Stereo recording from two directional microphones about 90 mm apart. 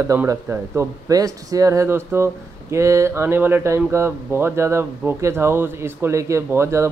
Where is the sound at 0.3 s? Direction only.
35° right (ahead or behind).